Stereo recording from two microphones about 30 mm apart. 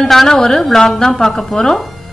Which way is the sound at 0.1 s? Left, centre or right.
Centre.